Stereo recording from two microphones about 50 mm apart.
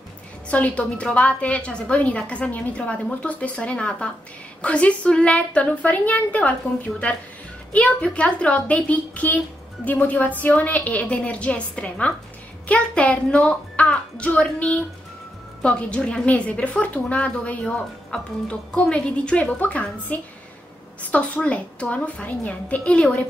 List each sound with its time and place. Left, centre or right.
0.5 s a woman's voice: left